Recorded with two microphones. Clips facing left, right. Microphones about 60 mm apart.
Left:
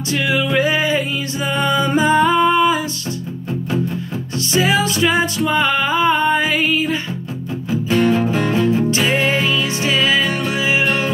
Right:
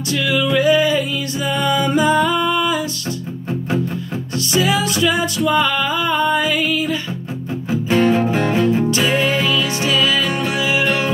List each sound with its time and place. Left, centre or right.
0.1 s music: left
4.6 s music: left
7.9 s music: right
8.9 s music: left